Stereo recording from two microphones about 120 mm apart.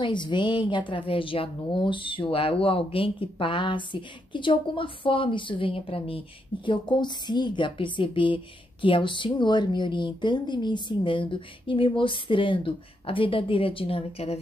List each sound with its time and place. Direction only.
0.0 s a woman's voice: 40° left (ahead or behind); by 14.4 s 60° left (ahead or behind)